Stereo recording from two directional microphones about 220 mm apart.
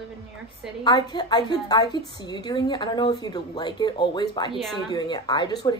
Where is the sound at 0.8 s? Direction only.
20° left (ahead or behind).